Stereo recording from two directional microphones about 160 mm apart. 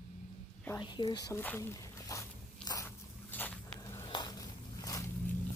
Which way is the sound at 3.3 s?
10° left (ahead or behind).